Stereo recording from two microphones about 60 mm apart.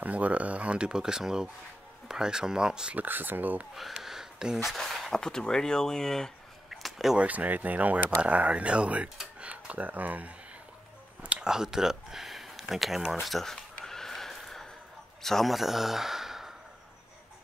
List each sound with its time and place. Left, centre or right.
0.0 s speech: right
3.0 s speech: right
3.7 s a sound: centre
4.6 s speech: centre
6.7 s a sound: centre
7.2 s speech: right
11.4 s speech: centre
13.8 s a sound: centre
15.2 s speech: centre